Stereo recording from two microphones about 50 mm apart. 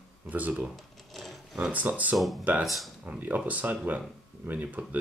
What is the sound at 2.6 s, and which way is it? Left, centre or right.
Speech, centre.